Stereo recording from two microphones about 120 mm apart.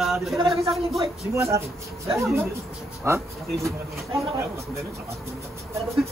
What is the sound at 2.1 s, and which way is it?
A man's voice, 25° right (ahead or behind).